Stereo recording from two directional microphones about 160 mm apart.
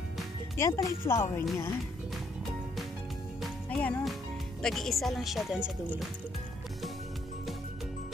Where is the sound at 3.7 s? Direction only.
5° left (ahead or behind).